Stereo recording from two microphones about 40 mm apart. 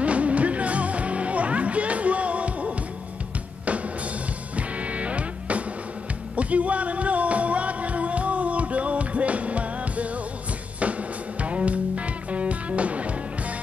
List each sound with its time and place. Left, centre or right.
0.0 s music: right
4.6 s music: right